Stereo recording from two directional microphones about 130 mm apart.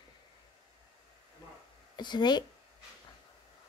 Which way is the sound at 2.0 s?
35° left (ahead or behind).